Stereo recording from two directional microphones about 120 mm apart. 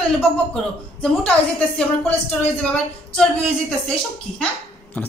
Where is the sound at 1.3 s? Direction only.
10° left (ahead or behind).